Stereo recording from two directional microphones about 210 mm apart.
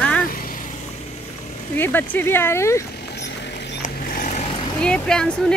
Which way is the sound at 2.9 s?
55° left (ahead or behind).